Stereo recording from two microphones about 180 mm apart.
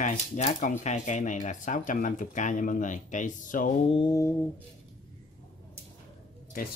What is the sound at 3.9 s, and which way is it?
Speech, 25° left (ahead or behind).